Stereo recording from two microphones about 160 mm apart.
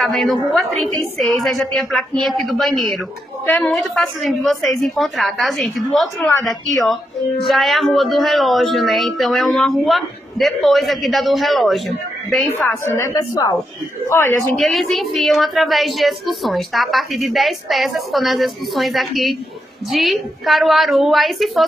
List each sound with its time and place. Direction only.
0.0 s a woman's voice: centre (ahead or behind)
12.4 s a woman's voice: 15° left (ahead or behind)
14.6 s a woman's voice: centre (ahead or behind)